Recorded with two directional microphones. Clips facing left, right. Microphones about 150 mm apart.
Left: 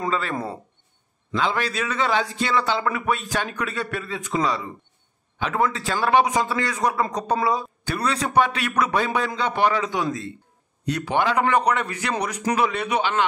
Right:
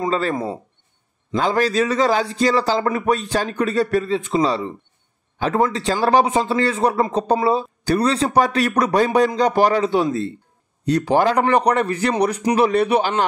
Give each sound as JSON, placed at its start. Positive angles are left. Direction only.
{"t": 0.1, "sound": "speech", "side_deg": -35}